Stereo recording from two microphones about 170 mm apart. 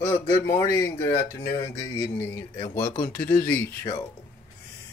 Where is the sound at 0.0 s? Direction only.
15° left (ahead or behind).